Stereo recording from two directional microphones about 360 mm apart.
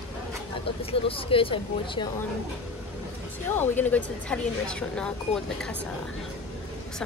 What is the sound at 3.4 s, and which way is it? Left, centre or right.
Speech, centre.